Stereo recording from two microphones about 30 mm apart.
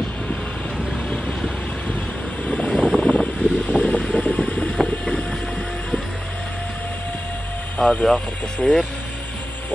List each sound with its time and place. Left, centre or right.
2.4 s vehicle: left
2.7 s vehicle: left
3.0 s a sound: left
3.7 s vehicle: left
4.8 s train: left
7.8 s speech: centre
8.6 s speech: left